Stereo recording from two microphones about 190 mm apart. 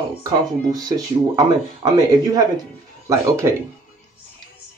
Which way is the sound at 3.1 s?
15° right (ahead or behind).